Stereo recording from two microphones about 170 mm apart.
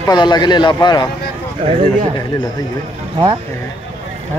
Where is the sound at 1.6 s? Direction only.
45° right (ahead or behind).